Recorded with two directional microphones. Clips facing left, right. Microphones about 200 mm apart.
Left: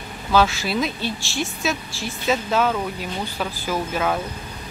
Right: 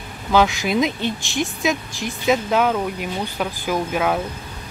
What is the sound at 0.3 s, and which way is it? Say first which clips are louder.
A woman's voice: right 2 dB; 15° right (ahead or behind).